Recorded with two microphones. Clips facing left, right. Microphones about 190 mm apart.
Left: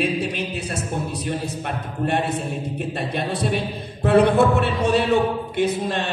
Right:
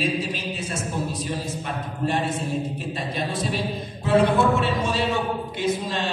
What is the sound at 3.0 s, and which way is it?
A man's voice, 60° left (ahead or behind).